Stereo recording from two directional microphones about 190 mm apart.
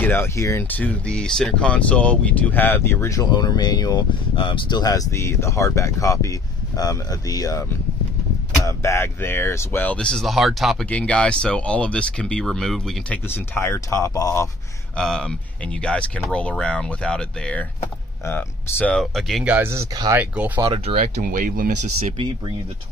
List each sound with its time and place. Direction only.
0.0 s speech: 15° left (ahead or behind)
8.6 s speech: 15° left (ahead or behind)
13.3 s speech: 15° left (ahead or behind)
15.0 s speech: 5° left (ahead or behind)
20.6 s speech: 30° right (ahead or behind)
21.0 s speech: 45° right (ahead or behind)